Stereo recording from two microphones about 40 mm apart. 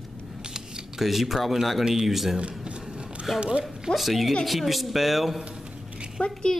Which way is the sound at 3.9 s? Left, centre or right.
Centre.